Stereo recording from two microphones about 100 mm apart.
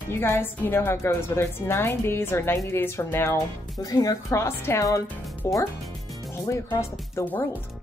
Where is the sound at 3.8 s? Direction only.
40° left (ahead or behind).